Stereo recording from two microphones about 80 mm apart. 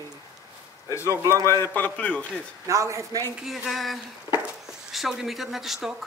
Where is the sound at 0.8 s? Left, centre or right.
Left.